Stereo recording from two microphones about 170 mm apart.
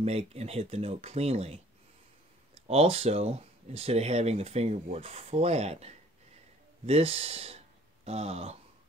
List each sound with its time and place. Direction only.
0.0 s speech: 40° right (ahead or behind)
2.7 s speech: 35° right (ahead or behind)